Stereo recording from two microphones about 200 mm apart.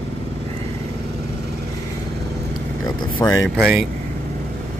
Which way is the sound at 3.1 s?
15° left (ahead or behind).